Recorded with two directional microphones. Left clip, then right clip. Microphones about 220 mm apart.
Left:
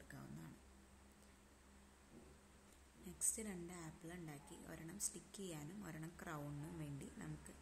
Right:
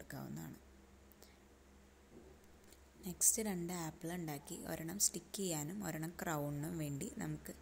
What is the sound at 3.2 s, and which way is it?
A woman's voice, 20° right (ahead or behind).